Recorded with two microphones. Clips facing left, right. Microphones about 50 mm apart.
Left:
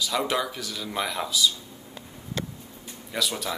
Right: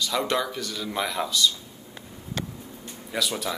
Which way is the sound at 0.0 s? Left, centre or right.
Centre.